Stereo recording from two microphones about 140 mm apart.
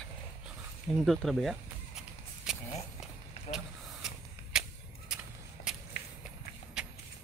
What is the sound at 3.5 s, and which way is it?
Vehicle, 5° right (ahead or behind).